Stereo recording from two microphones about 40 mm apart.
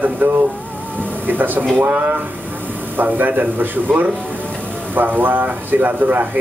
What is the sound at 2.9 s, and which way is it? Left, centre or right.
Speech, right.